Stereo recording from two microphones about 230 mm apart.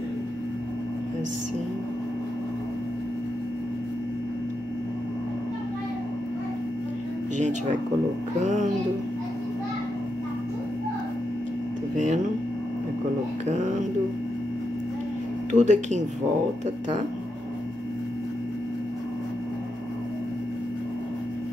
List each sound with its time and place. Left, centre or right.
15.5 s speech: right